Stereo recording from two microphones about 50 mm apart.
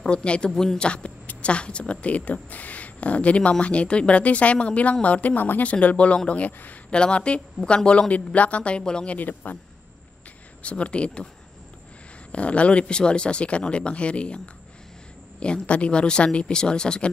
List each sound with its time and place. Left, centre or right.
0.0 s speech: left
0.5 s a woman's voice: centre; by 5.7 s left
5.7 s speech: left
10.6 s speech: left
12.3 s speech: left
15.4 s speech: left